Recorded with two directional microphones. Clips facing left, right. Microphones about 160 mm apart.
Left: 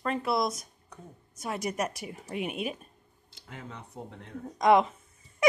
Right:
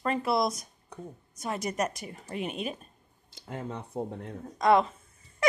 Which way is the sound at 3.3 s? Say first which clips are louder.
Right 7 dB; 40° right (ahead or behind).